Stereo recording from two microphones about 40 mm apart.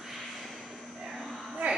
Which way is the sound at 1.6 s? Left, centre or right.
Right.